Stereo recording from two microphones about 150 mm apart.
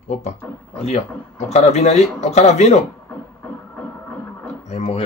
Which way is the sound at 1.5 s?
45° left (ahead or behind).